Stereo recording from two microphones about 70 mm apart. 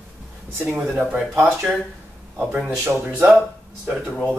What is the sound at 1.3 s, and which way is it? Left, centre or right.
Speech, centre.